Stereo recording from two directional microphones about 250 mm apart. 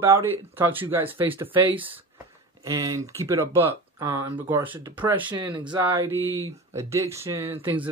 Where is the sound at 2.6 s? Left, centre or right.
Centre.